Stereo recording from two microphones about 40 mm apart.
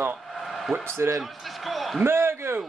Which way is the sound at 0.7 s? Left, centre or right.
Centre.